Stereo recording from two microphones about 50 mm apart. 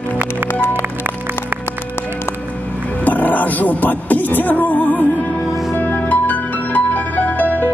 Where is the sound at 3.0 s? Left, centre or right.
Left.